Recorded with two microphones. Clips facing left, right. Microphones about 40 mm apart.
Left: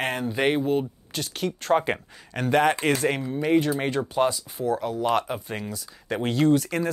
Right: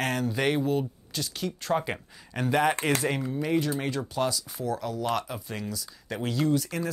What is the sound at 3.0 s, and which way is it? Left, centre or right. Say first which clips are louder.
Speech: left 3 dB; left.